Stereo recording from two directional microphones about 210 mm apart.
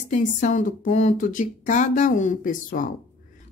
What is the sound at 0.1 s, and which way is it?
A woman's voice, 35° left (ahead or behind).